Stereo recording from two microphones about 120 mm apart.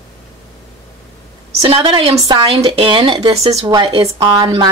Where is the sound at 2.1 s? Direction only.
35° right (ahead or behind).